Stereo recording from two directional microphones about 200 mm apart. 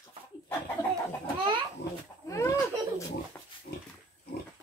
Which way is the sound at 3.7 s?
45° left (ahead or behind).